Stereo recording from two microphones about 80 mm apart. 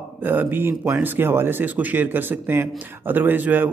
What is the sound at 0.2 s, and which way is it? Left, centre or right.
Speech, right.